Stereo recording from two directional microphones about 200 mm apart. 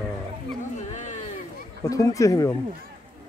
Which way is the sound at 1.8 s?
15° left (ahead or behind).